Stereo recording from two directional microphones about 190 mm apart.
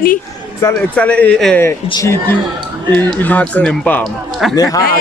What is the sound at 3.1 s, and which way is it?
A man's voice, 5° left (ahead or behind).